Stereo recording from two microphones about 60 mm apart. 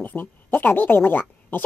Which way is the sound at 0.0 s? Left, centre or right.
Left.